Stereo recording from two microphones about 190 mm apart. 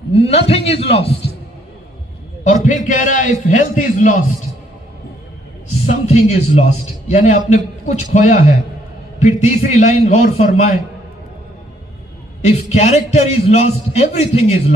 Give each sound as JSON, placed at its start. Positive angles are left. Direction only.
{"t": 0.1, "sound": "a man's voice", "side_deg": 30}
{"t": 2.4, "sound": "a man's voice", "side_deg": 45}
{"t": 5.9, "sound": "a man's voice", "side_deg": 35}
{"t": 12.4, "sound": "a man's voice", "side_deg": 35}